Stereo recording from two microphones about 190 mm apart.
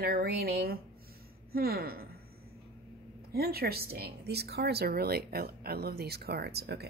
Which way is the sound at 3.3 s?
55° right (ahead or behind).